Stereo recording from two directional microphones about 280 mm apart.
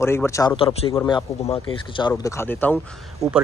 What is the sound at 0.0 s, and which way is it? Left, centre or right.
Speech, centre.